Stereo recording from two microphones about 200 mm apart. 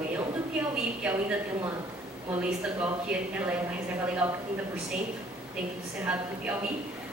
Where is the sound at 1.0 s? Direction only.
10° right (ahead or behind).